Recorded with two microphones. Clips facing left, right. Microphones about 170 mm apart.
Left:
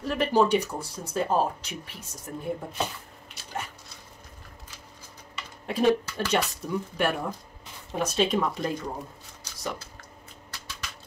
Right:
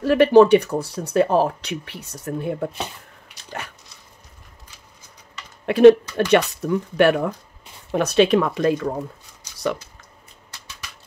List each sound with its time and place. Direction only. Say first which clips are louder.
0.0 s speech: right 11 dB; 75° right (ahead or behind)
5.7 s speech: right 12 dB; 70° right (ahead or behind)